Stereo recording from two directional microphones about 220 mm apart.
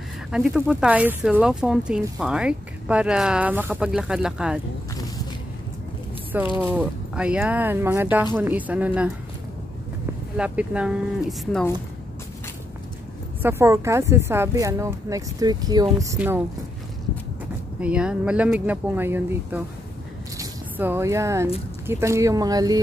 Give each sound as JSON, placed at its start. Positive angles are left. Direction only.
{"t": 0.3, "sound": "speech", "side_deg": 0}
{"t": 6.6, "sound": "speech", "side_deg": -5}
{"t": 10.3, "sound": "speech", "side_deg": -5}
{"t": 13.4, "sound": "speech", "side_deg": -10}
{"t": 17.7, "sound": "speech", "side_deg": -5}